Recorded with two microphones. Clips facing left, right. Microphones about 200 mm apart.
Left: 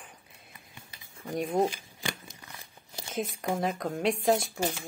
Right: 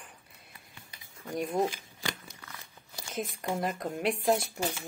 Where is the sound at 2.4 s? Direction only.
20° left (ahead or behind).